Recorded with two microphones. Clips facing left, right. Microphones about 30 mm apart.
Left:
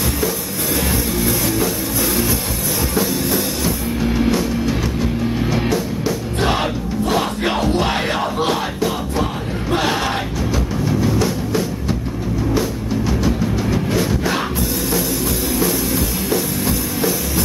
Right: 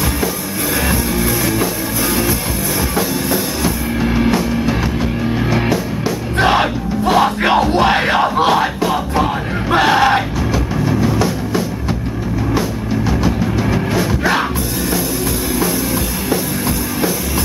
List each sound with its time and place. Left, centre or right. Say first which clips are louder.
3.0 s music: even; centre
4.0 s music: right 2 dB; centre
6.4 s music: right 6 dB; right
8.5 s music: right 5 dB; right
10.9 s music: right 2 dB; centre
13.2 s music: right 2 dB; centre
16.3 s music: right 2 dB; centre